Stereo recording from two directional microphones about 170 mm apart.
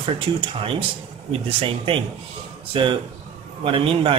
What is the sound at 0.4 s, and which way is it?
Speech, 30° right (ahead or behind).